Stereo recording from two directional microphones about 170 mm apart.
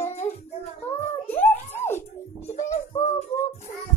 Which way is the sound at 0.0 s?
40° left (ahead or behind).